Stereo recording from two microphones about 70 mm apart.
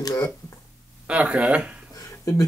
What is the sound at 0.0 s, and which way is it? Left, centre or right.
Speech, left.